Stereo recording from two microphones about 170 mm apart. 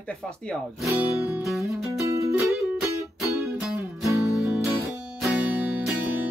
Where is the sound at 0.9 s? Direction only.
15° right (ahead or behind).